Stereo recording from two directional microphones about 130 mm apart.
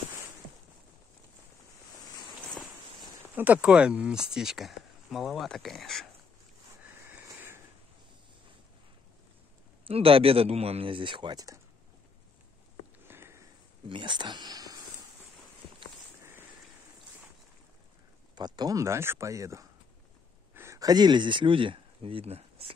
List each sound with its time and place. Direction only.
3.3 s speech: 10° right (ahead or behind)
6.9 s a sound: 20° right (ahead or behind)
9.8 s speech: 45° right (ahead or behind); by 11.6 s 25° right (ahead or behind)
13.0 s sniff: 20° right (ahead or behind)
13.8 s speech: 40° right (ahead or behind)
16.2 s a sound: 20° right (ahead or behind)
18.3 s speech: 30° right (ahead or behind); by 22.8 s 50° right (ahead or behind)